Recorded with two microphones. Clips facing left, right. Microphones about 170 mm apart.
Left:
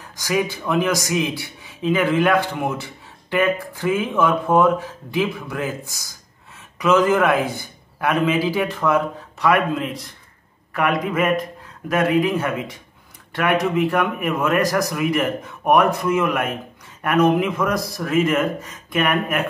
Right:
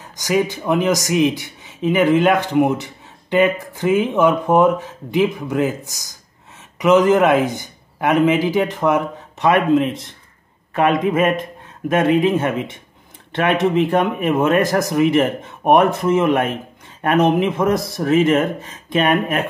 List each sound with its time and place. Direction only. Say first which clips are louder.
0.1 s speech: right 3 dB; 20° right (ahead or behind)